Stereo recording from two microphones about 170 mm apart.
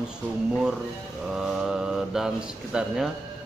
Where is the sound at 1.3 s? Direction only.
5° right (ahead or behind).